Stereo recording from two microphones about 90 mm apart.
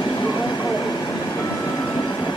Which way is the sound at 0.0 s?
55° left (ahead or behind).